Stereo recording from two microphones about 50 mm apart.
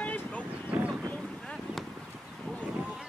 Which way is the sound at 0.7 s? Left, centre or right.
Right.